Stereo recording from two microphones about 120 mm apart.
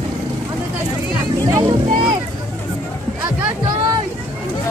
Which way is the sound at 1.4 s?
35° right (ahead or behind).